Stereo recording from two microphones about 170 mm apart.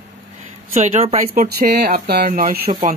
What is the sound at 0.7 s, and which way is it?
Speech, 45° right (ahead or behind).